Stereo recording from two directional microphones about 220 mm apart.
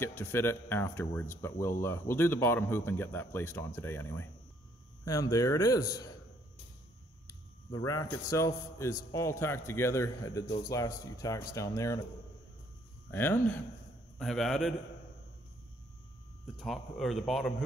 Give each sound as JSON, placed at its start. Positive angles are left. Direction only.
{"t": 0.0, "sound": "a man's voice", "side_deg": 10}
{"t": 7.2, "sound": "a man's voice", "side_deg": 15}
{"t": 13.1, "sound": "a man's voice", "side_deg": 10}
{"t": 16.5, "sound": "speech", "side_deg": 0}